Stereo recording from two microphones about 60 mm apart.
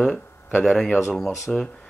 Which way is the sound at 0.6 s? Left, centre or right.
Centre.